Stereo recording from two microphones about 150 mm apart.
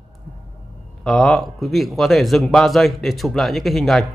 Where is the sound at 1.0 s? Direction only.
Centre (ahead or behind).